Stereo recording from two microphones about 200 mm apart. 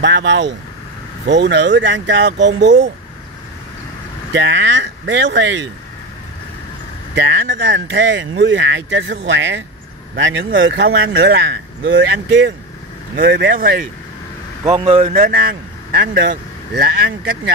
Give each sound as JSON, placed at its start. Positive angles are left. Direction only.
{"t": 0.0, "sound": "speech", "side_deg": -60}
{"t": 4.3, "sound": "speech", "side_deg": -60}
{"t": 7.2, "sound": "speech", "side_deg": -60}
{"t": 14.6, "sound": "speech", "side_deg": -20}
{"t": 14.9, "sound": "speech", "side_deg": -35}
{"t": 15.3, "sound": "speech", "side_deg": -55}